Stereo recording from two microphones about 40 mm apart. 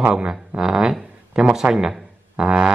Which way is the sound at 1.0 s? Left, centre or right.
Centre.